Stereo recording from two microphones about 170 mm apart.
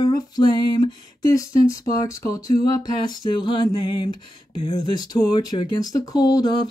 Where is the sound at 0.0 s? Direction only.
20° left (ahead or behind).